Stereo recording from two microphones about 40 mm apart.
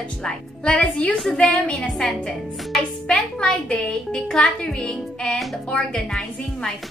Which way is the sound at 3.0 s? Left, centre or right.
Left.